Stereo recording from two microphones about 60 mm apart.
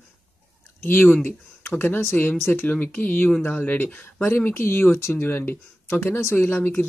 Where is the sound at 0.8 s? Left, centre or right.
Left.